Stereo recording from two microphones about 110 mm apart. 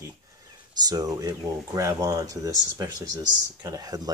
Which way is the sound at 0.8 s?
35° right (ahead or behind).